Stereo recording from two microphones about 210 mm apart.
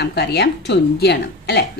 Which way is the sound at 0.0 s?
50° left (ahead or behind).